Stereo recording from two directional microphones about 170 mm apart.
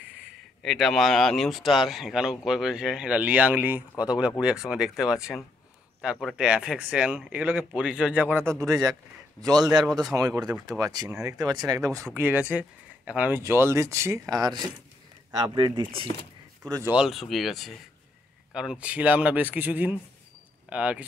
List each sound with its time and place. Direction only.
0.6 s speech: centre (ahead or behind); by 12.0 s 20° right (ahead or behind)
12.1 s speech: 10° right (ahead or behind)
16.9 s speech: centre (ahead or behind)